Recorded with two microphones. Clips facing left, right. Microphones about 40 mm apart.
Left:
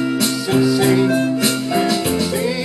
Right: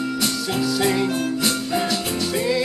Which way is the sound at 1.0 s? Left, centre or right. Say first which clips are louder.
Left 5 dB; left.